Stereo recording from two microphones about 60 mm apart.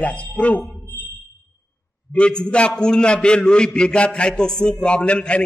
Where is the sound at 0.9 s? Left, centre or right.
Left.